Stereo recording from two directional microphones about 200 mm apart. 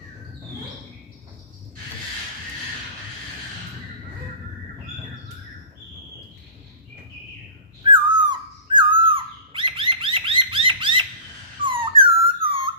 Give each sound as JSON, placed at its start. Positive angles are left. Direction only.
{"t": 7.8, "sound": "owl", "side_deg": -25}
{"t": 11.6, "sound": "dog", "side_deg": -25}
{"t": 12.0, "sound": "a sound", "side_deg": -25}